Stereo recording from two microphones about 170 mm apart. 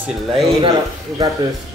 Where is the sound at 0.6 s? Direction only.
35° right (ahead or behind).